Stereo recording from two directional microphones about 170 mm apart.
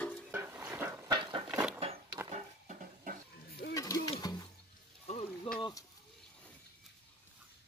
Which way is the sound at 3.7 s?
20° left (ahead or behind).